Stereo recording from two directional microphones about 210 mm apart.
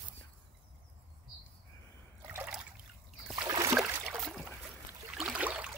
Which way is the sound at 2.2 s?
5° right (ahead or behind).